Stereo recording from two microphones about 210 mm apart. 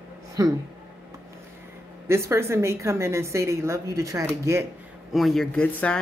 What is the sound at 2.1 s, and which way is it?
Speech, 15° right (ahead or behind).